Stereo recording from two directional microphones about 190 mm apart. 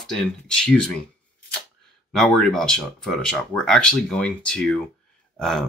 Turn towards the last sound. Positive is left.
turn(degrees=0)  # may be behind; listen again after turning